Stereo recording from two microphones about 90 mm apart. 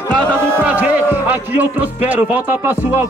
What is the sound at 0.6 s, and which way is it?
Speech, 15° right (ahead or behind).